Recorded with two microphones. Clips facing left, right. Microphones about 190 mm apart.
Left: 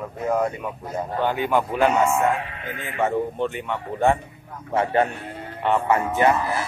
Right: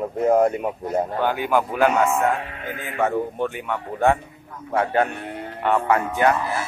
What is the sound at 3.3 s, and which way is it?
Speech, 5° right (ahead or behind).